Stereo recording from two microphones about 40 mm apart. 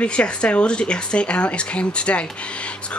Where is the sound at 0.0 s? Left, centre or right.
Left.